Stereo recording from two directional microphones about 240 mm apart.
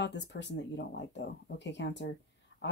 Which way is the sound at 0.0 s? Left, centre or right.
Left.